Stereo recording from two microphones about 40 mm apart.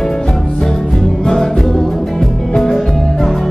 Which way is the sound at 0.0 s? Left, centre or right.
Centre.